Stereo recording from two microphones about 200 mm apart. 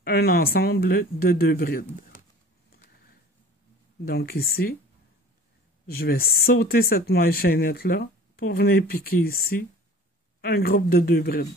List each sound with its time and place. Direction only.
0.0 s speech: 50° left (ahead or behind)
4.0 s speech: 50° left (ahead or behind)
5.9 s speech: 50° left (ahead or behind)